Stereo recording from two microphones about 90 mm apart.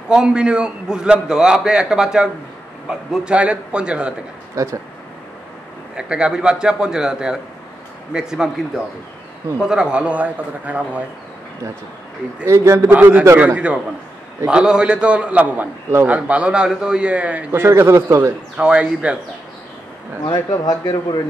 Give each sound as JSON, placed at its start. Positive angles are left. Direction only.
{"t": 0.1, "sound": "a man's voice", "side_deg": -10}
{"t": 4.6, "sound": "a man's voice", "side_deg": -40}
{"t": 5.9, "sound": "a man's voice", "side_deg": -10}
{"t": 12.4, "sound": "a man's voice", "side_deg": -30}
{"t": 12.9, "sound": "a man's voice", "side_deg": -20}
{"t": 13.4, "sound": "a man's voice", "side_deg": -15}
{"t": 17.5, "sound": "a man's voice", "side_deg": -30}
{"t": 18.6, "sound": "a man's voice", "side_deg": -10}
{"t": 20.2, "sound": "speech", "side_deg": 50}